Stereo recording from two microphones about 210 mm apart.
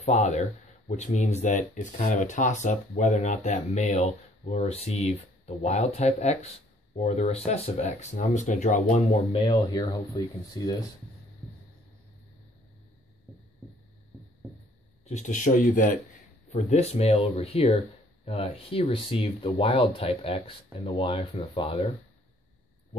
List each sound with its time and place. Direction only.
0.0 s speech: 35° left (ahead or behind)
9.5 s speech: 20° left (ahead or behind)
15.0 s speech: 35° left (ahead or behind)